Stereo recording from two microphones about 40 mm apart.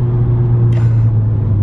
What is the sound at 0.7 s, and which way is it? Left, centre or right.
Vehicle, centre.